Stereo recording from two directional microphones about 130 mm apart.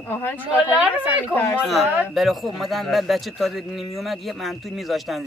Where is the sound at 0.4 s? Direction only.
10° right (ahead or behind).